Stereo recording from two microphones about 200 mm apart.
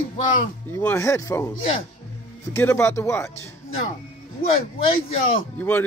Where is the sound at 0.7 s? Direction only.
15° left (ahead or behind).